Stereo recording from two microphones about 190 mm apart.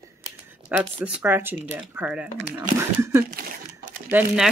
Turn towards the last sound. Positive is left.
turn(degrees=-5)  # may be behind; listen again after turning